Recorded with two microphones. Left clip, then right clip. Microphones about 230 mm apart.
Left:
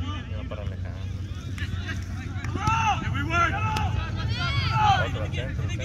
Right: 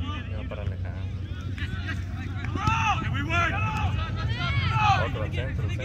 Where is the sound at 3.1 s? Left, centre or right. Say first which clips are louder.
Left 2 dB; centre.